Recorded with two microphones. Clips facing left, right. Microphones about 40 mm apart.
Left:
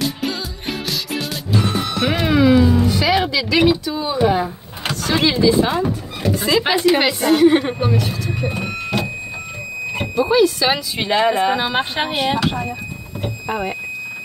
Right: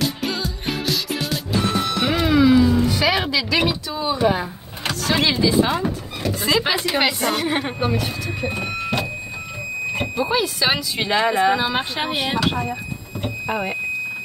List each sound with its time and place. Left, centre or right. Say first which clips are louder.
0.0 s music: left 1 dB; centre
2.2 s music: left 1 dB; centre
2.8 s a woman's voice: left 2 dB; centre
8.0 s a sound: left 2 dB; centre
9.9 s speech: left 7 dB; centre
11.0 s speech: left 2 dB; centre
11.5 s speech: left 2 dB; left
12.1 s speech: left 3 dB; centre
13.2 s speech: left 1 dB; centre